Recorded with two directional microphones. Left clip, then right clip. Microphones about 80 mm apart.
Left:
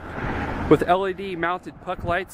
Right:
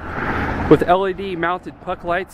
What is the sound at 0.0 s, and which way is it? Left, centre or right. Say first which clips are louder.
Vehicle: right 6 dB; right.